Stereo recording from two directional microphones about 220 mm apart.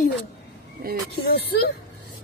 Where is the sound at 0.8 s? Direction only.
45° right (ahead or behind).